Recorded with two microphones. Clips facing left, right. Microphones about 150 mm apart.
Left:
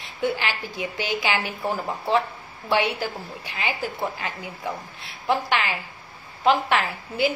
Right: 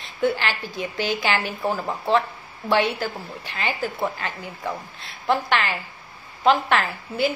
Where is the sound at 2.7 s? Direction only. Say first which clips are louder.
Right 2 dB; 10° left (ahead or behind).